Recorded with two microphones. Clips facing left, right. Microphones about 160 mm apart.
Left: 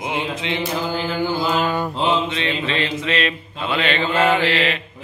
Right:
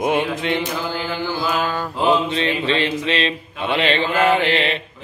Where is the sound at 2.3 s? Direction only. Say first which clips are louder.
Right 3 dB; 35° right (ahead or behind).